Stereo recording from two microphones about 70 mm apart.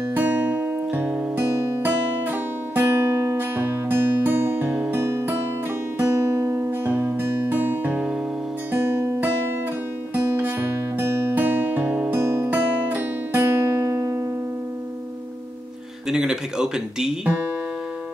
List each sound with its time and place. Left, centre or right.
0.1 s music: right
6.8 s music: right
11.3 s music: right
16.1 s music: centre